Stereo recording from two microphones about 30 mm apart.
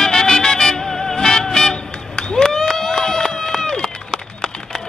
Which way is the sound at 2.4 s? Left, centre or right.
Centre.